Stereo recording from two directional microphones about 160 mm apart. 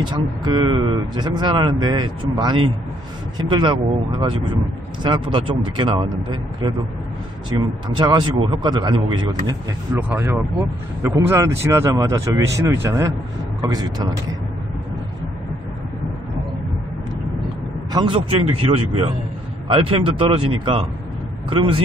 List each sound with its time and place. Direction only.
0.0 s speech: 25° right (ahead or behind)
7.4 s speech: 30° right (ahead or behind)
9.9 s speech: 10° right (ahead or behind)
17.9 s speech: 30° right (ahead or behind)